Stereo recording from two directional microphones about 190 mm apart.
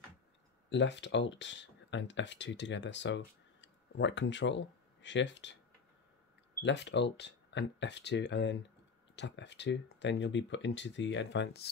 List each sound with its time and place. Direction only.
0.7 s speech: 70° left (ahead or behind)
6.6 s speech: 65° left (ahead or behind)